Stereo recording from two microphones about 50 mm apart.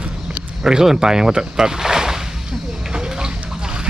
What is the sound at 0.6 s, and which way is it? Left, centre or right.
Speech, centre.